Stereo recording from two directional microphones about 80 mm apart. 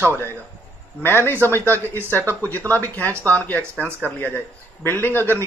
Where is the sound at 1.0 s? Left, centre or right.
Left.